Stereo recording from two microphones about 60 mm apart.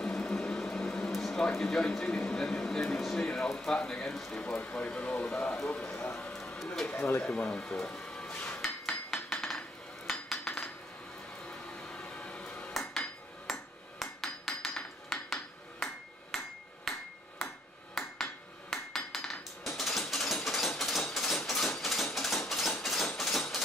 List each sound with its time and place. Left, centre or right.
0.0 s a sound: centre
1.5 s a man's voice: centre
6.3 s a sound: centre
6.6 s speech: centre
6.9 s speech: left
7.3 s speech: centre
8.5 s hammer: centre
10.0 s dishes: centre
11.7 s vehicle: centre
12.7 s hammer: centre
18.2 s hammer: centre
19.6 s a sound: centre